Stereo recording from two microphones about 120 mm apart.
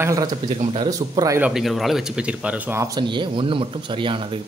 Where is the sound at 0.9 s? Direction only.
30° right (ahead or behind).